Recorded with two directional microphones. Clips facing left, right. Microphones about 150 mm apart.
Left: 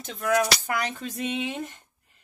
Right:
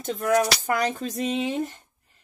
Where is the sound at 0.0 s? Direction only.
40° right (ahead or behind).